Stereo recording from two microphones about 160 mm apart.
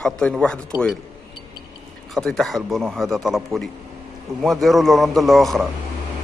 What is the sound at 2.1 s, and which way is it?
A man's voice, centre (ahead or behind).